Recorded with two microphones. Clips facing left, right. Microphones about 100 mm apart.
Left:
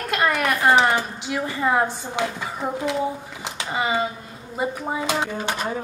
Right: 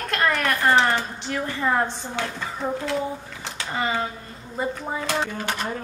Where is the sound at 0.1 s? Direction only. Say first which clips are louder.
Left 2 dB; 10° left (ahead or behind).